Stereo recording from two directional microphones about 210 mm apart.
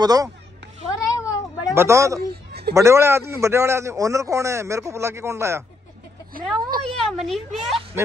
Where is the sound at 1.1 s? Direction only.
15° left (ahead or behind).